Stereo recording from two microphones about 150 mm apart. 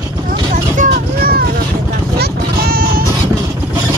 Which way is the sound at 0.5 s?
75° right (ahead or behind).